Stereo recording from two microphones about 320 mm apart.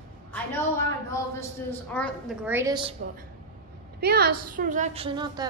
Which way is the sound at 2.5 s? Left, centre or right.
Centre.